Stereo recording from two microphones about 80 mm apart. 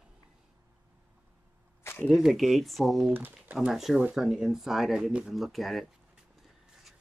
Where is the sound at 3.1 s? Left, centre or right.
Right.